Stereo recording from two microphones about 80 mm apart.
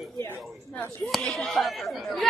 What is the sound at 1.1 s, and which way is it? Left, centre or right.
Chatter, centre.